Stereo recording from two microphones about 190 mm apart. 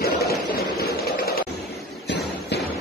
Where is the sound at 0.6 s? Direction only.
55° left (ahead or behind).